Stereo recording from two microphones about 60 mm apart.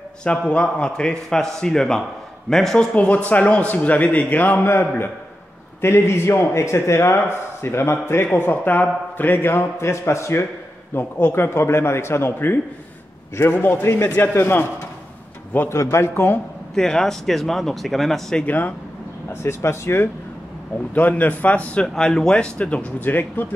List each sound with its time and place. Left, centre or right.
0.5 s a man's voice: centre
2.9 s a man's voice: left
8.4 s a man's voice: left
15.7 s a man's voice: left
16.7 s speech: centre
19.2 s a man's voice: left
20.9 s speech: left
21.8 s speech: centre; by 23.4 s left